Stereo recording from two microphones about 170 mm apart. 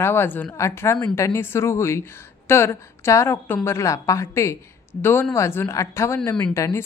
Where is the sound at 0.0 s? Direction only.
15° left (ahead or behind).